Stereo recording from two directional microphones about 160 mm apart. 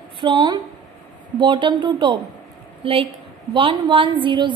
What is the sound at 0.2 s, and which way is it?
A woman's voice, 30° right (ahead or behind).